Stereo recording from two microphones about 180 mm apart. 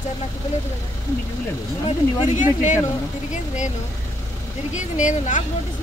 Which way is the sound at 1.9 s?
40° left (ahead or behind).